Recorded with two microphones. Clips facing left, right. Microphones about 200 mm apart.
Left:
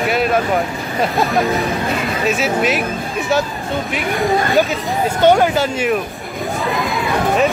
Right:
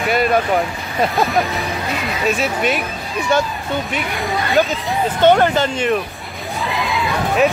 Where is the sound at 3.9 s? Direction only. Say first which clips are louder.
Left 5 dB; centre (ahead or behind).